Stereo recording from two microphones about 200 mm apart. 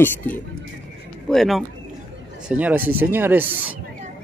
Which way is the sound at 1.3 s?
Centre (ahead or behind).